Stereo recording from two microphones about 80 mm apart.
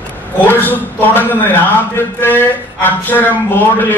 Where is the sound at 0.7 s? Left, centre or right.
Left.